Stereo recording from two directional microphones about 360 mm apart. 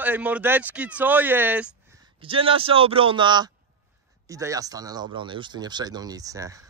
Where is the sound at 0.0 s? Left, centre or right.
Centre.